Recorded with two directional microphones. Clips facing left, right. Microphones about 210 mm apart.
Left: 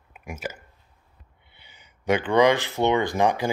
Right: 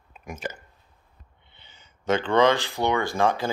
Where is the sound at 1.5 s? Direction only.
10° left (ahead or behind).